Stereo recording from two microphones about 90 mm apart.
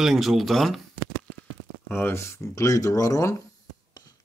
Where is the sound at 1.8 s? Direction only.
20° left (ahead or behind).